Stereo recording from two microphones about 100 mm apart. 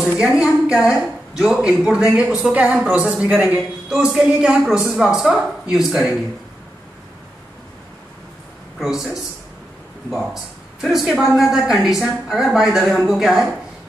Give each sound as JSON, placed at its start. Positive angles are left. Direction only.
{"t": 0.0, "sound": "a woman's voice", "side_deg": -5}
{"t": 8.7, "sound": "a woman's voice", "side_deg": -5}